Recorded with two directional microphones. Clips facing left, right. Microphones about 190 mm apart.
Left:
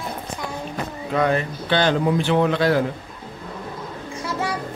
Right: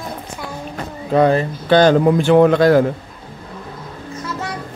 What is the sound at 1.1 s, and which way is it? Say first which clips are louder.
Speech: right 7 dB; 35° right (ahead or behind).